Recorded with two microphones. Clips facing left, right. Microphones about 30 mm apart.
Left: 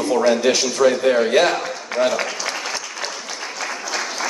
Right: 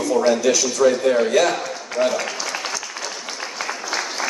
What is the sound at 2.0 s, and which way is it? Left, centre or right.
Speech, left.